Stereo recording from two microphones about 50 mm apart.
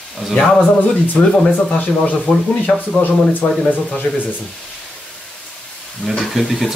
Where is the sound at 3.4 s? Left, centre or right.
Left.